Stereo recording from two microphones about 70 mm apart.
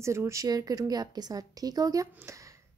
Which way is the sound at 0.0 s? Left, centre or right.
Right.